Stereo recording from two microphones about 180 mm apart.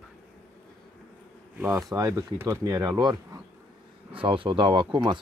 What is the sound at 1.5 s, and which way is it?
Speech, 15° right (ahead or behind).